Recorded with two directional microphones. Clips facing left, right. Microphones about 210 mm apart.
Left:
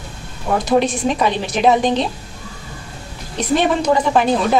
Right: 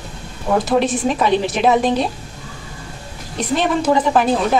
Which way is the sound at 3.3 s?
Centre (ahead or behind).